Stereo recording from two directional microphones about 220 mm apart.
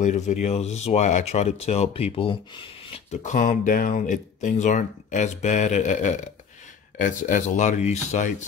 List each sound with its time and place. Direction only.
0.0 s speech: 35° left (ahead or behind)